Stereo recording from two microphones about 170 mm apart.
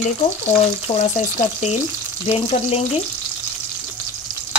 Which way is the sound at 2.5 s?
35° left (ahead or behind).